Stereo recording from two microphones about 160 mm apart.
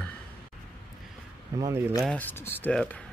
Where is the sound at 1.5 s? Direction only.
20° right (ahead or behind).